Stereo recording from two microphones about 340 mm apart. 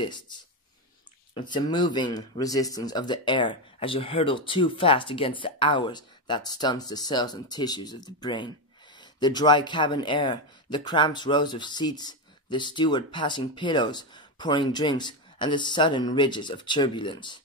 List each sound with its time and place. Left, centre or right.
1.3 s speech: centre